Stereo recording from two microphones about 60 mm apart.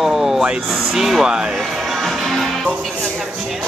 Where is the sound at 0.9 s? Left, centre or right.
Centre.